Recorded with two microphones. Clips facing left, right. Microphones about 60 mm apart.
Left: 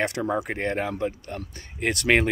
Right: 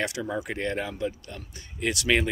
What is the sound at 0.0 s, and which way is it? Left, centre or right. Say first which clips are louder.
Speech: left 4 dB; left.